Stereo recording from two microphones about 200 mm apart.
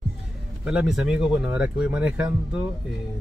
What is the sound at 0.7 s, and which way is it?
Speech, 5° right (ahead or behind).